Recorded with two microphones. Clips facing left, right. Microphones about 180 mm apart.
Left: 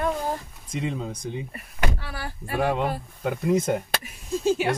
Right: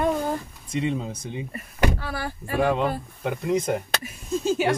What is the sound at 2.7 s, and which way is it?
Speech, 5° left (ahead or behind).